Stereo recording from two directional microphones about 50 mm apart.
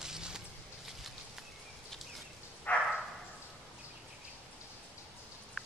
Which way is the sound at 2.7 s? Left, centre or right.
Left.